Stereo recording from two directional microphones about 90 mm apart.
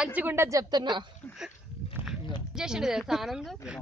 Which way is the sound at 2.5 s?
5° right (ahead or behind).